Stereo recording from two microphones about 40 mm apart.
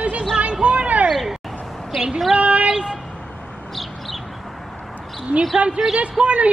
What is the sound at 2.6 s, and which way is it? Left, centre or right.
Vehicle, right.